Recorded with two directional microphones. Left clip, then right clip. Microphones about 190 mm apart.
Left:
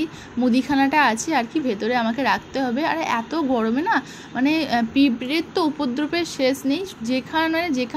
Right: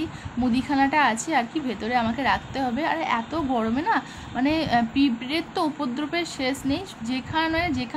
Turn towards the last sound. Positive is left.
turn(degrees=15)  # may be behind; listen again after turning